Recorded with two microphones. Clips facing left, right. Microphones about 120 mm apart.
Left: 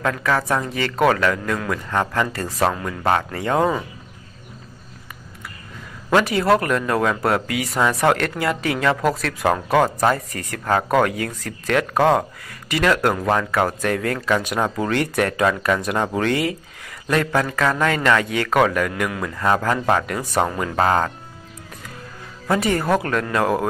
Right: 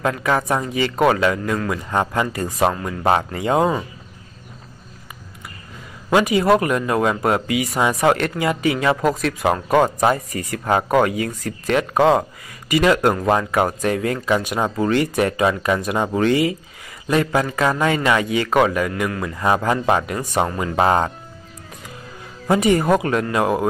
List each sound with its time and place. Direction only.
0.0 s speech: 15° right (ahead or behind)
6.0 s speech: 10° right (ahead or behind)
13.4 s speech: 15° right (ahead or behind); by 19.3 s 5° left (ahead or behind)
19.3 s speech: 15° right (ahead or behind)
20.4 s speech: centre (ahead or behind)
20.7 s speech: 15° right (ahead or behind)
22.5 s speech: 10° right (ahead or behind)